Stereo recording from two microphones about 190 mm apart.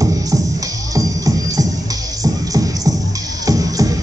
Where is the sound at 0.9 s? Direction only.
15° right (ahead or behind).